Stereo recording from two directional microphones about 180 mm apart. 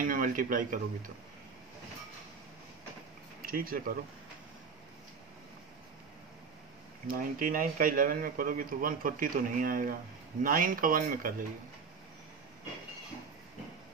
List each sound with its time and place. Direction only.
0.0 s speech: 50° right (ahead or behind)
3.4 s a man's voice: 50° right (ahead or behind)
7.1 s a man's voice: 50° right (ahead or behind)